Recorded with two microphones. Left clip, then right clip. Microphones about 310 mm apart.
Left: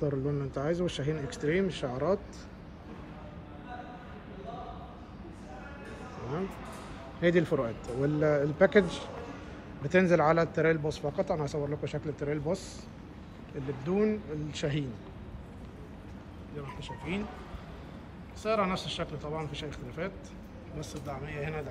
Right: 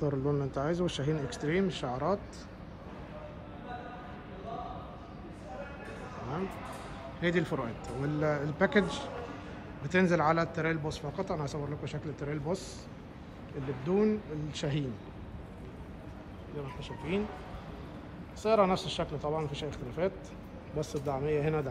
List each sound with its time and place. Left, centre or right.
0.0 s speech: centre
7.2 s a man's voice: centre
13.8 s speech: centre
16.6 s speech: centre
18.4 s speech: centre